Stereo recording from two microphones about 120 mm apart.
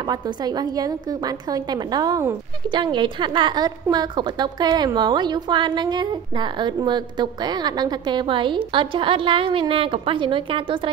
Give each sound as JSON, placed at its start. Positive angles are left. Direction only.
{"t": 0.0, "sound": "a woman's voice", "side_deg": -35}